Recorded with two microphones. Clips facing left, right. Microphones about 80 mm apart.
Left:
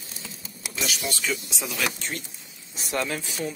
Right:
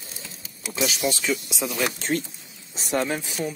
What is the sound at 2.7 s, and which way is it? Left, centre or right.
Speech, right.